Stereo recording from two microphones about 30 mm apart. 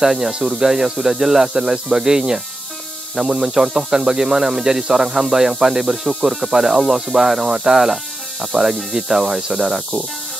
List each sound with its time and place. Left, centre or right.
0.0 s speech: centre